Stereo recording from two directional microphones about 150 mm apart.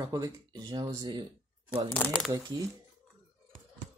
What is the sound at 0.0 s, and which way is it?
Speech, 25° right (ahead or behind).